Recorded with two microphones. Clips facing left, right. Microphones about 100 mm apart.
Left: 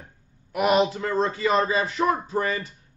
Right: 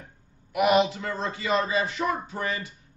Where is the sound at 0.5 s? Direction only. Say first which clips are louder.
Left 1 dB; 35° left (ahead or behind).